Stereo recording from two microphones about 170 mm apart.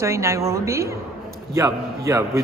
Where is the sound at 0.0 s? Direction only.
15° right (ahead or behind).